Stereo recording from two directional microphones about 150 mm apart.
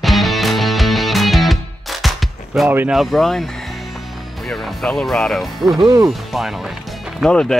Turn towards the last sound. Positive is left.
turn(degrees=5)  # may be behind; listen again after turning